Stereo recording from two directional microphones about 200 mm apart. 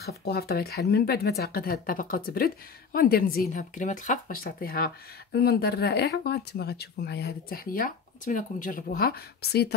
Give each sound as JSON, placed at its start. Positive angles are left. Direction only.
{"t": 0.2, "sound": "speech", "side_deg": 50}